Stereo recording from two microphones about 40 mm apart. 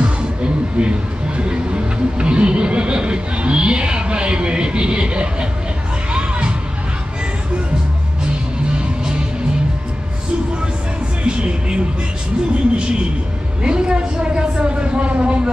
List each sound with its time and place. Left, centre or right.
0.0 s music: right
8.7 s music: right
11.2 s music: right
12.7 s a sound: right